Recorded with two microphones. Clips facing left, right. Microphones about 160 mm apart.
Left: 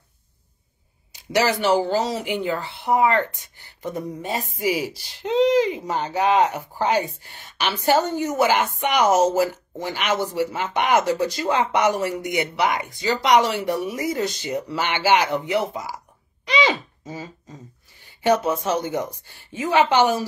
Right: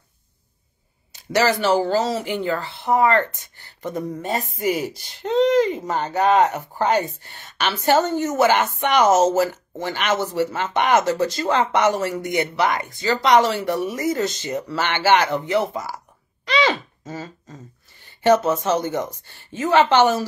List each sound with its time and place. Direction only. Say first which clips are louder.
1.3 s speech: right 1 dB; 15° left (ahead or behind)
4.6 s speech: even; 50° right (ahead or behind)
5.4 s speech: right 1 dB; 10° left (ahead or behind)
5.9 s speech: right 2 dB; 50° right (ahead or behind)
7.2 s speech: right 1 dB; 10° left (ahead or behind)
16.4 s a sound: right 1 dB; 15° left (ahead or behind)
18.2 s speech: right 3 dB; 15° left (ahead or behind)